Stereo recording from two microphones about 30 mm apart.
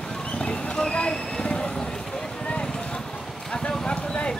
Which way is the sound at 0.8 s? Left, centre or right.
Left.